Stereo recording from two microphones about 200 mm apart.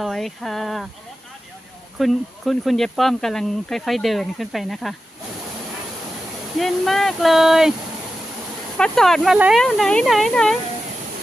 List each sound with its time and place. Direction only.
0.0 s speech: centre (ahead or behind)
2.0 s speech: centre (ahead or behind)
6.6 s speech: centre (ahead or behind)
8.7 s speech: 5° left (ahead or behind)